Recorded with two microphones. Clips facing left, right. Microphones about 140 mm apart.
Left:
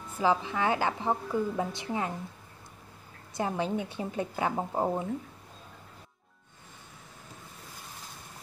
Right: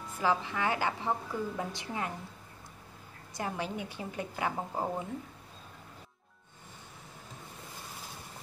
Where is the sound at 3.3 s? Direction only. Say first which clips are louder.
Left 5 dB; 25° left (ahead or behind).